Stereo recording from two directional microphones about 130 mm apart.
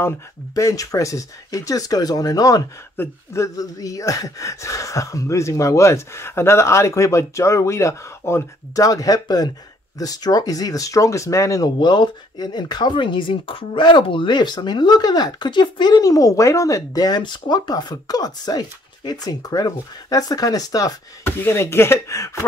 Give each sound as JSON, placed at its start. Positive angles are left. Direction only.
{"t": 0.6, "sound": "speech", "side_deg": 25}